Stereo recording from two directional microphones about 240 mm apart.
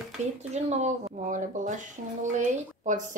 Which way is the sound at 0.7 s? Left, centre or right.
Right.